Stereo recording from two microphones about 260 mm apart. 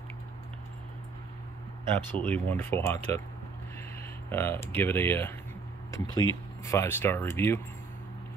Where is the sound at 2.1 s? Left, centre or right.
Centre.